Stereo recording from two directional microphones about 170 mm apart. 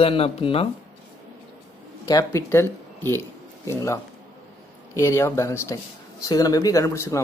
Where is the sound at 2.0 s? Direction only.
20° left (ahead or behind).